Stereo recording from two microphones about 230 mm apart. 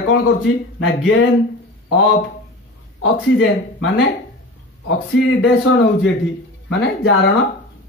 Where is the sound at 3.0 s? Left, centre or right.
Left.